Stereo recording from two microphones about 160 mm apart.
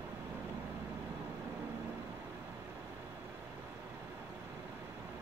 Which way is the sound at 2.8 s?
10° right (ahead or behind).